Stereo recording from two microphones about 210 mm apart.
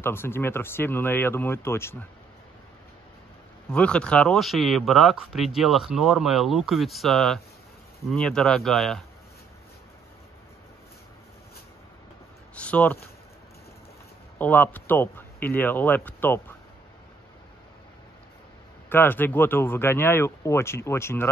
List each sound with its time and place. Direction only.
0.0 s speech: 10° left (ahead or behind)
3.7 s speech: 5° left (ahead or behind)
12.5 s speech: 5° left (ahead or behind)
14.4 s speech: 10° left (ahead or behind)
18.9 s speech: 10° left (ahead or behind)